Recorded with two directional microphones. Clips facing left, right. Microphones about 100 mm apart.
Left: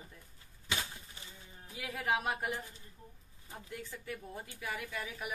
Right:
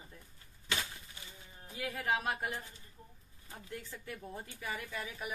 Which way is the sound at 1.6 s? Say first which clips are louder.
Right 1 dB; 5° left (ahead or behind).